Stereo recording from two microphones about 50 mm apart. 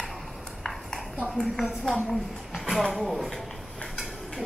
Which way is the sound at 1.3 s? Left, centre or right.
Centre.